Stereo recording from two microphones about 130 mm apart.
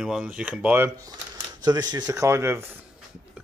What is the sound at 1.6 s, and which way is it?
Speech, 30° right (ahead or behind).